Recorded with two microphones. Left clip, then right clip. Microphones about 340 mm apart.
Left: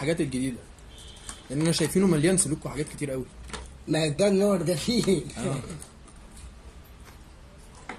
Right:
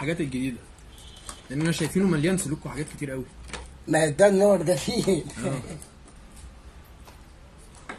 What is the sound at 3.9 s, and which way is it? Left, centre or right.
A man's voice, right.